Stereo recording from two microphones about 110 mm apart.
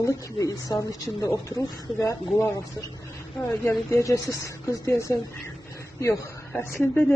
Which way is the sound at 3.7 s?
25° left (ahead or behind).